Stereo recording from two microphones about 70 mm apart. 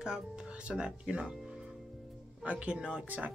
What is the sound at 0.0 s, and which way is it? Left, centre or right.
Speech, centre.